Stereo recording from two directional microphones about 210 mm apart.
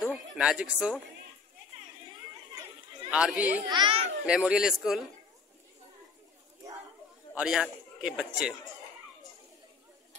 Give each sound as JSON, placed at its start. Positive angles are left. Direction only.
{"t": 0.0, "sound": "a sound", "side_deg": -5}
{"t": 3.1, "sound": "speech", "side_deg": -5}
{"t": 3.6, "sound": "a child's voice", "side_deg": -20}
{"t": 4.3, "sound": "a man's voice", "side_deg": -5}
{"t": 7.3, "sound": "a man's voice", "side_deg": -5}